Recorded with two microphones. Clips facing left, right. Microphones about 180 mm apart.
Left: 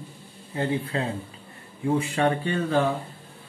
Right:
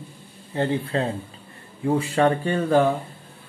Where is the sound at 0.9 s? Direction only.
30° right (ahead or behind); by 2.8 s 50° right (ahead or behind).